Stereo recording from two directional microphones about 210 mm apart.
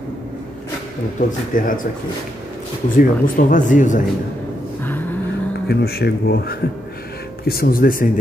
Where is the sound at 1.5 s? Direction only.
40° left (ahead or behind).